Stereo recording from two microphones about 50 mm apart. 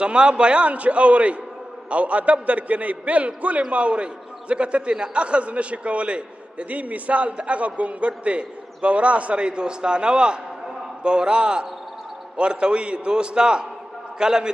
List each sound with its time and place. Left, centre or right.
0.0 s a man's voice: centre